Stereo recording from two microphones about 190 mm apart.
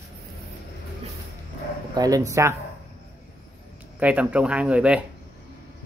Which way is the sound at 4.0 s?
5° right (ahead or behind).